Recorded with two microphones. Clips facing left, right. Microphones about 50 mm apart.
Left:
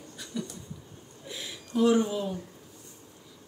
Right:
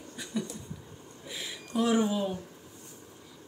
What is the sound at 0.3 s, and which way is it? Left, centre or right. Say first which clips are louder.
Speech: right 1 dB; centre.